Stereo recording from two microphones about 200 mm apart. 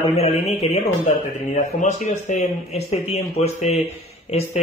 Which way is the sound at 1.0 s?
35° left (ahead or behind).